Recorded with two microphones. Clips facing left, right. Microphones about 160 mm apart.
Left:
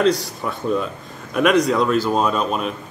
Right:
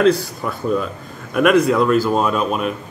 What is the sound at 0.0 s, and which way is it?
A man's voice, centre (ahead or behind).